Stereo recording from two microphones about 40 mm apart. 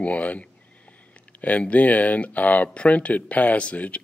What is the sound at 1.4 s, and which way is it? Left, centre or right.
Speech, left.